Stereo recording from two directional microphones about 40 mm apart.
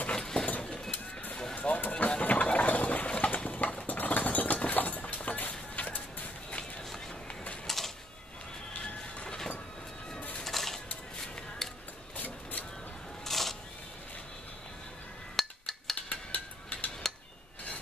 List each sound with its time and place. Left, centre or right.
0.1 s vehicle: centre
1.7 s vehicle: left
2.2 s a sound: left
3.1 s clip-clop: left
4.7 s a sound: left
5.0 s vehicle: left
7.6 s a sound: centre
8.7 s train: left
10.4 s music: centre
11.6 s scissors: centre
13.2 s single-lens reflex camera: centre
15.3 s cutlery: centre
16.1 s a sound: left